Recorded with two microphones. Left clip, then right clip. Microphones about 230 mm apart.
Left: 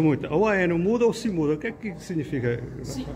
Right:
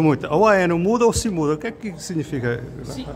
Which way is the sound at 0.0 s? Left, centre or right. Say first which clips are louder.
Right 6 dB; centre.